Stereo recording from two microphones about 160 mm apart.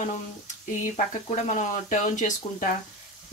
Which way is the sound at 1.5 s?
50° left (ahead or behind).